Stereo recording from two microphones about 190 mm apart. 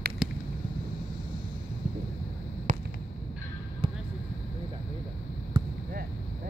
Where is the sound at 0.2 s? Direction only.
Centre (ahead or behind).